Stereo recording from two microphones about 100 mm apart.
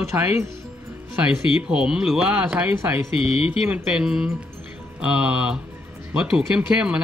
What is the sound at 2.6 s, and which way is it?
Speech, 20° right (ahead or behind).